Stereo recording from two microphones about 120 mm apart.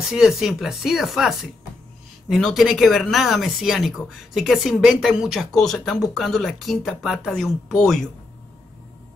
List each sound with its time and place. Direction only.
0.1 s speech: 5° right (ahead or behind)